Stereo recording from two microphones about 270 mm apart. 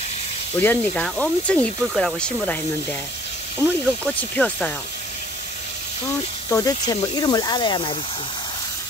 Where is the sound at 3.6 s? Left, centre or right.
Centre.